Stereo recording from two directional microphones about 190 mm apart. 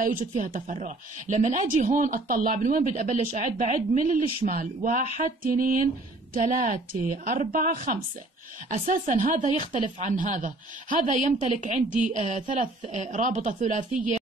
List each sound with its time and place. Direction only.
0.0 s a woman's voice: 45° right (ahead or behind)